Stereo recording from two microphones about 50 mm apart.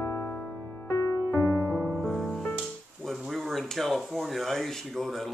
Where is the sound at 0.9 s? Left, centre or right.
Left.